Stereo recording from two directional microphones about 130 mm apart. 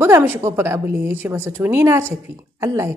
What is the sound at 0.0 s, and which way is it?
A woman's voice, 20° right (ahead or behind).